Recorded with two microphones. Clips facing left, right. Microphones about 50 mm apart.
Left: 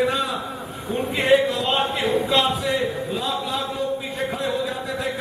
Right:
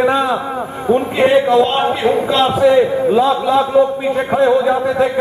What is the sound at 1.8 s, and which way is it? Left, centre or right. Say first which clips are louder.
Speech: right 8 dB; right.